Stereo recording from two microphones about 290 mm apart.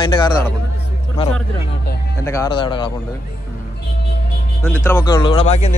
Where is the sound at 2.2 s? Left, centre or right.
Centre.